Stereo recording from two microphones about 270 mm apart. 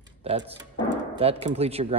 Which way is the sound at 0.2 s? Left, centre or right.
Right.